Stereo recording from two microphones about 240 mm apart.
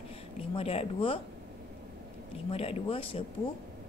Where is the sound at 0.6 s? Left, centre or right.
Left.